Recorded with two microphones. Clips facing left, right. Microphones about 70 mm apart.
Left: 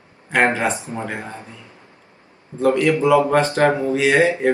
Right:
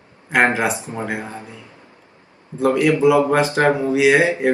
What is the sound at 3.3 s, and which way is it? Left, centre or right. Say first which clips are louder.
Speech: even; centre.